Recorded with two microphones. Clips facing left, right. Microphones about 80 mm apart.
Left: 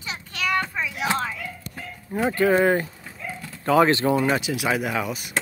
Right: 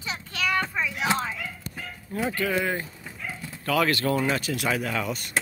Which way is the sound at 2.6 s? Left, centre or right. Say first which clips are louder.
Left 8 dB; left.